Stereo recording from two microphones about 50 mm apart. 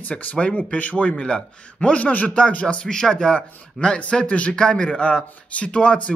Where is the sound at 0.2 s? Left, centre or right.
Left.